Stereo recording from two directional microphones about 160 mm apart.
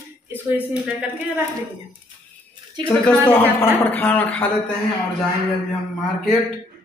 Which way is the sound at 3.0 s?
15° left (ahead or behind).